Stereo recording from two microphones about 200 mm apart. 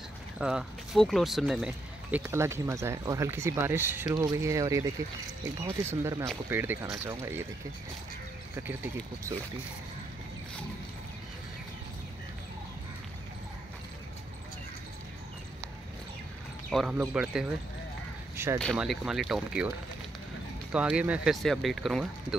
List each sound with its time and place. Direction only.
0.4 s speech: 5° right (ahead or behind)
8.5 s speech: 10° right (ahead or behind)
16.7 s speech: 5° right (ahead or behind)
18.3 s a sound: 10° right (ahead or behind)
18.6 s speech: centre (ahead or behind)
20.7 s speech: 5° right (ahead or behind)